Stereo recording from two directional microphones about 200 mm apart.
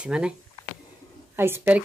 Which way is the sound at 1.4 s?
10° right (ahead or behind).